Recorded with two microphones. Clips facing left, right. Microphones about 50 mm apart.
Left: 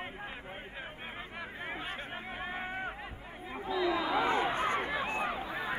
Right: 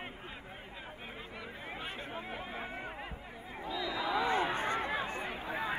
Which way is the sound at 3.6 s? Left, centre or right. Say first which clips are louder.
Left 5 dB; left.